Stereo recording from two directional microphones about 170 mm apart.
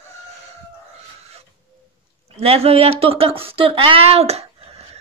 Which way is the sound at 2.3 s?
35° right (ahead or behind).